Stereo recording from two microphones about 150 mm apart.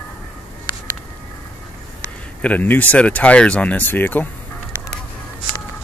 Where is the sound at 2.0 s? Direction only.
10° left (ahead or behind).